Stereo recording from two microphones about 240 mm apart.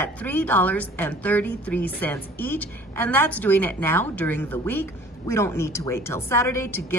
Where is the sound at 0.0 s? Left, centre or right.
Centre.